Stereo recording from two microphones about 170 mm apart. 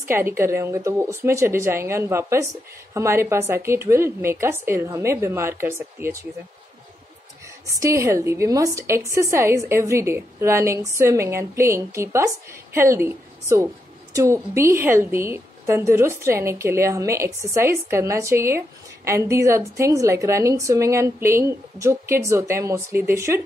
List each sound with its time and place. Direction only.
0.1 s speech: 15° right (ahead or behind)
7.6 s a woman's voice: 15° right (ahead or behind)